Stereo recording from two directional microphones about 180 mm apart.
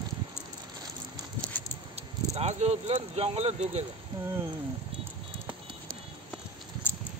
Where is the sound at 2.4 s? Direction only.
35° right (ahead or behind).